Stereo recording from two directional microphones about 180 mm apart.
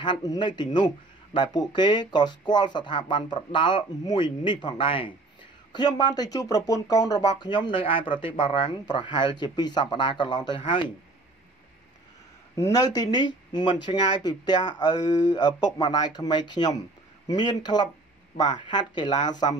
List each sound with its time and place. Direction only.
0.0 s speech: 25° left (ahead or behind)
12.6 s speech: 20° left (ahead or behind)